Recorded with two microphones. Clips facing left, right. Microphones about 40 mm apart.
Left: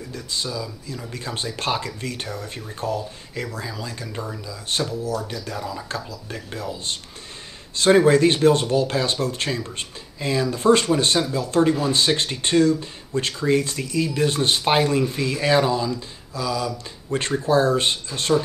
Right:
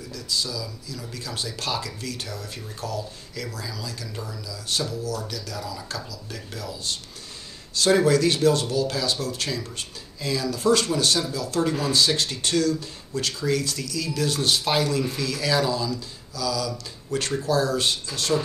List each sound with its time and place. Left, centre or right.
0.1 s speech: left